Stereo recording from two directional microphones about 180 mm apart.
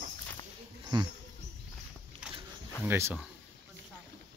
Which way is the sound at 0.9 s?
25° right (ahead or behind).